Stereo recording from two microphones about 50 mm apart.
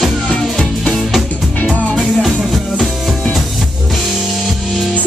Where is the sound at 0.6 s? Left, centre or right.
Centre.